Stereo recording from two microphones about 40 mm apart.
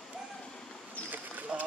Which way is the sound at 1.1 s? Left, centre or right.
Right.